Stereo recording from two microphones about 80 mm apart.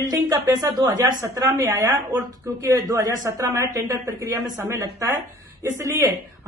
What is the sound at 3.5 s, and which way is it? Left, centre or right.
A man's voice, right.